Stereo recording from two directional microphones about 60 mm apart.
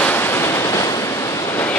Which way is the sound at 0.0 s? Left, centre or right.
Left.